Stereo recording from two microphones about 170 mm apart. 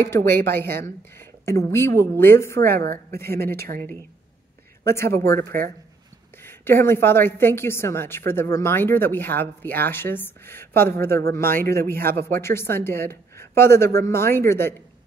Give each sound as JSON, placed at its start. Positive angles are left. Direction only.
{"t": 0.0, "sound": "a woman's voice", "side_deg": 15}
{"t": 2.7, "sound": "speech", "side_deg": -65}
{"t": 3.3, "sound": "a woman's voice", "side_deg": 15}
{"t": 4.8, "sound": "a woman's voice", "side_deg": 15}